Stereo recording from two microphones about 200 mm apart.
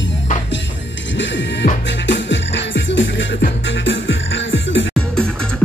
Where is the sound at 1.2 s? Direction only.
65° left (ahead or behind).